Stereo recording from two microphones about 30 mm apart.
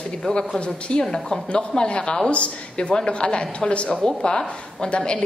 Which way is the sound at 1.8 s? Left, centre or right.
Left.